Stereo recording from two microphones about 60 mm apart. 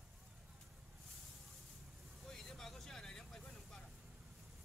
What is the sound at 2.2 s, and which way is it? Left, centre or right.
Vehicle, centre.